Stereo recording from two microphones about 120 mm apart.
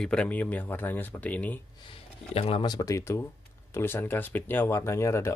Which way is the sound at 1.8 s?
50° left (ahead or behind).